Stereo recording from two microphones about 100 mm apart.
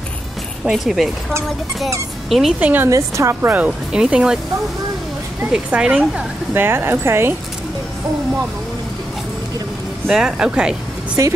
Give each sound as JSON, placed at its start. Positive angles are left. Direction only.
{"t": 0.7, "sound": "speech", "side_deg": -5}
{"t": 2.2, "sound": "speech", "side_deg": 0}
{"t": 2.6, "sound": "speech", "side_deg": -20}
{"t": 2.9, "sound": "speech", "side_deg": -30}
{"t": 3.5, "sound": "speech", "side_deg": -10}
{"t": 5.4, "sound": "speech", "side_deg": -10}
{"t": 10.0, "sound": "speech", "side_deg": -5}